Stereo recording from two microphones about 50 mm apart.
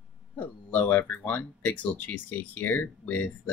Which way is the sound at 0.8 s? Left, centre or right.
Left.